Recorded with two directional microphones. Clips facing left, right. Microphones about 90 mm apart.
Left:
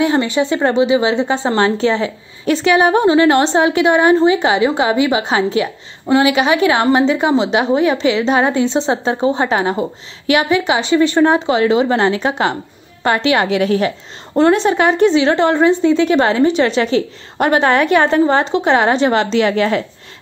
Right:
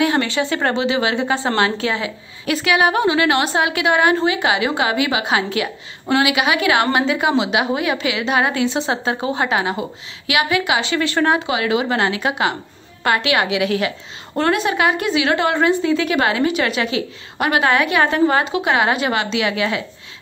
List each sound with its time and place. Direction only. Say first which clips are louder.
0.0 s a woman's voice: left 3 dB; 25° left (ahead or behind)
1.6 s a woman's voice: left 5 dB; 30° left (ahead or behind)
10.7 s a woman's voice: left 6 dB; 20° left (ahead or behind)
11.4 s a woman's voice: left 6 dB; 30° left (ahead or behind)
14.3 s a woman's voice: left 6 dB; 25° left (ahead or behind); by 19.8 s 40° left (ahead or behind)